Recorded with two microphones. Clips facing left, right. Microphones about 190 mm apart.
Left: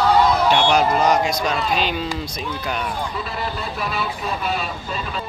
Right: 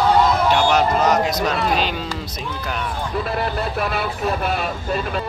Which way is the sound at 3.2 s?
55° right (ahead or behind).